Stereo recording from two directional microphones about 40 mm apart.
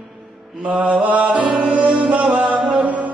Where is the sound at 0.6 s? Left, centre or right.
Right.